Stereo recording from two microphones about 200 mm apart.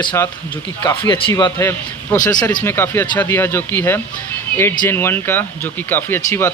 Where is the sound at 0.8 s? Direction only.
20° left (ahead or behind).